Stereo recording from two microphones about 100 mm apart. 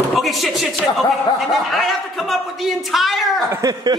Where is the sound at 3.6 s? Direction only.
45° right (ahead or behind).